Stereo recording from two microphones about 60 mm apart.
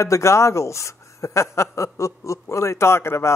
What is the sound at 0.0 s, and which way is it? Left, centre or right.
Speech, left.